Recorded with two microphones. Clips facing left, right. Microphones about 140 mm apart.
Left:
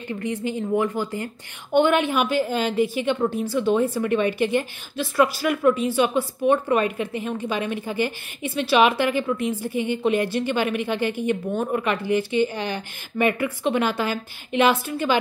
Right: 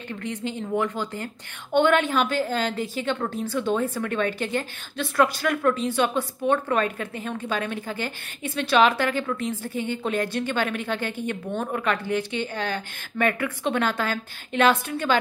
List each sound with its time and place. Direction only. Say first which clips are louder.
0.1 s a woman's voice: left 4 dB; 10° left (ahead or behind)